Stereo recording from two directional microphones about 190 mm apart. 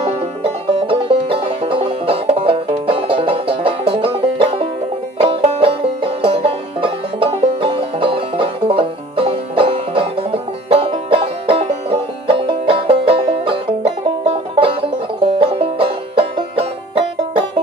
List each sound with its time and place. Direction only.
0.0 s music: 30° right (ahead or behind)